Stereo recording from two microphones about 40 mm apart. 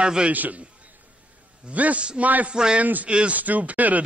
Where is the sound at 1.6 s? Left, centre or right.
Right.